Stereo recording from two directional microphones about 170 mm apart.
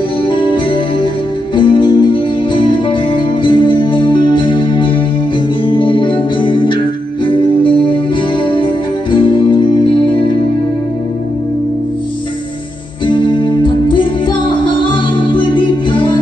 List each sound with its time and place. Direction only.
0.3 s music: 30° left (ahead or behind)
9.1 s music: 30° left (ahead or behind)
13.0 s music: 30° left (ahead or behind)